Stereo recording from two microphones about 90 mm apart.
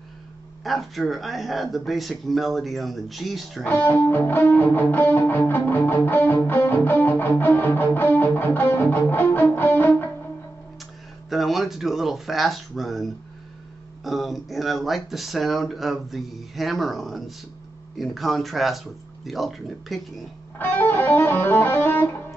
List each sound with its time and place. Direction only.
0.7 s speech: centre (ahead or behind)
3.6 s music: 20° left (ahead or behind)
11.2 s speech: centre (ahead or behind)
20.5 s music: 20° left (ahead or behind)